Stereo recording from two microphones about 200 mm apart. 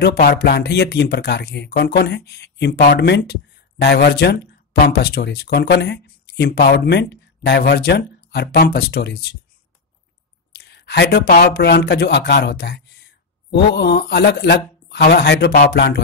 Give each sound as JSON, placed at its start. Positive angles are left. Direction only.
{"t": 0.0, "sound": "speech", "side_deg": 50}
{"t": 10.6, "sound": "speech", "side_deg": 55}